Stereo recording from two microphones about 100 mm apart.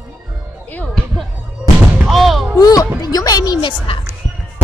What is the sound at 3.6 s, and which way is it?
Speech, 55° left (ahead or behind).